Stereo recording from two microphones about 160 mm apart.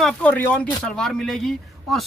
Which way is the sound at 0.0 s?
5° left (ahead or behind).